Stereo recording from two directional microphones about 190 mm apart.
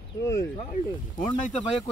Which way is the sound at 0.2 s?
15° left (ahead or behind).